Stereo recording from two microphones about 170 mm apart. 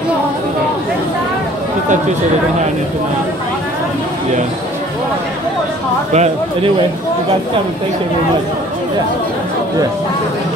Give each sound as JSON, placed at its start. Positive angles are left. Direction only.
{"t": 6.1, "sound": "speech", "side_deg": -40}